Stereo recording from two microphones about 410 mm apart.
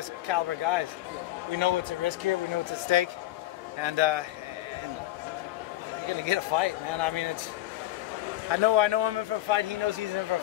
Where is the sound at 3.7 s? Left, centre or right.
Right.